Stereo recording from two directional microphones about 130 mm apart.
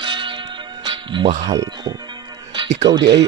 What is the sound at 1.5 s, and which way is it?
Speech, 25° right (ahead or behind).